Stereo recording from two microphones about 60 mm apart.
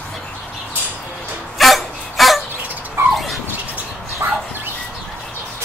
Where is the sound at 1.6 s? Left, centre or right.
Centre.